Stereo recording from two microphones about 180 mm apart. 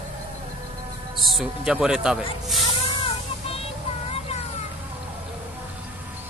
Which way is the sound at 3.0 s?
35° left (ahead or behind).